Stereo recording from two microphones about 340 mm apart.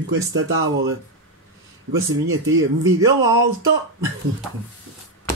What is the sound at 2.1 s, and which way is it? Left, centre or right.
Speech, right.